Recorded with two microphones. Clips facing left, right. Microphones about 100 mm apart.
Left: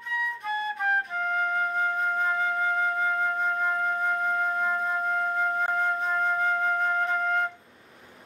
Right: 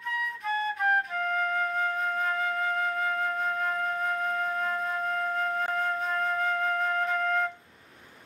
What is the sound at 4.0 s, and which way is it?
Music, centre (ahead or behind).